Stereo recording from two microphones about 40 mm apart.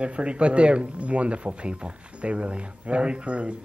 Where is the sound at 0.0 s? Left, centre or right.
Right.